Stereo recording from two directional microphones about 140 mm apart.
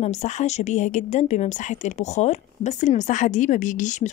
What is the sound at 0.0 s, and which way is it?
A woman's voice, 55° left (ahead or behind).